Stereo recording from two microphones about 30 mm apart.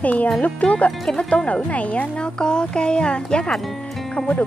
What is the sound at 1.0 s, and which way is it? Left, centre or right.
Speech, centre.